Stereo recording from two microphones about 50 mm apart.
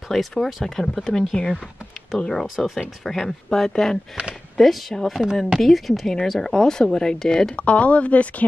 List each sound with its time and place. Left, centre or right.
0.1 s speech: centre
7.5 s speech: left